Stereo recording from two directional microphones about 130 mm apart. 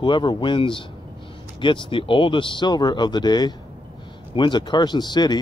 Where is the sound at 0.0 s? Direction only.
35° left (ahead or behind).